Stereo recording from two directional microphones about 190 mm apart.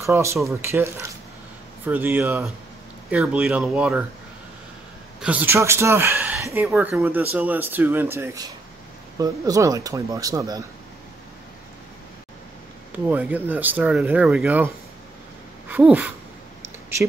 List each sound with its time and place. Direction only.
0.0 s speech: 15° right (ahead or behind)
5.2 s speech: 10° right (ahead or behind)
12.9 s speech: 10° right (ahead or behind)
15.7 s a sound: 10° right (ahead or behind)